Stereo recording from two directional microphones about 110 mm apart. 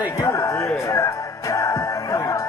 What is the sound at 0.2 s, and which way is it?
Music, 30° left (ahead or behind).